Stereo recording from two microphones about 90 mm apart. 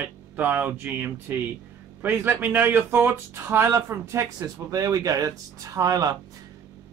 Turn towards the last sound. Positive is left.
turn(degrees=-40)  # may be behind; listen again after turning